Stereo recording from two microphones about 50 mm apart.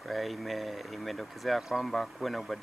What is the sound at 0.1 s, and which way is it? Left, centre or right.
Speech, centre.